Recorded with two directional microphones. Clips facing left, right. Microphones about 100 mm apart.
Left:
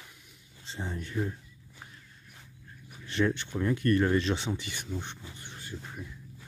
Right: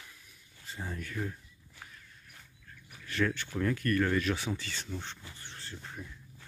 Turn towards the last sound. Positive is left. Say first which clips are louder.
# left 3 dB
turn(degrees=5)  # may be behind; listen again after turning